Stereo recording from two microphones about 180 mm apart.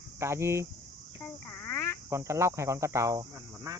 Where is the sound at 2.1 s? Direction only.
15° right (ahead or behind).